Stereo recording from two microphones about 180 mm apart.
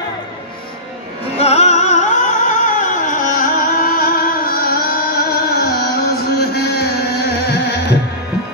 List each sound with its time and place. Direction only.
1.4 s music: 35° left (ahead or behind); by 7.9 s 70° left (ahead or behind)